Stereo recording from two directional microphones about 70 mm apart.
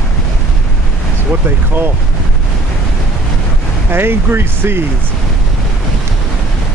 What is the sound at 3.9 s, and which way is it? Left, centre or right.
Speech, right.